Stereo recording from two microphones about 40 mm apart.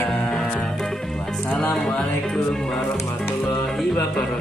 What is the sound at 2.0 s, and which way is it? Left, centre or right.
Music, left.